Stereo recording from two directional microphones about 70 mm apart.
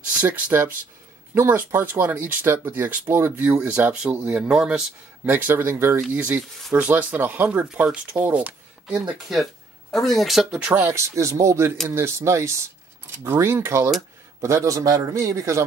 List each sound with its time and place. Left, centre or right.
0.5 s speech: right
3.3 s speech: right
5.3 s speech: right
7.4 s speech: centre
9.9 s speech: centre
10.8 s speech: right
11.2 s speech: right
14.8 s speech: right